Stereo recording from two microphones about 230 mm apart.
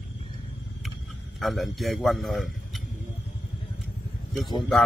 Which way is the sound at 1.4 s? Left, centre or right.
Centre.